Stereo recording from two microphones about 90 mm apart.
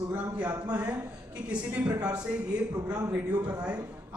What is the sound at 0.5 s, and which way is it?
A man's voice, 20° right (ahead or behind).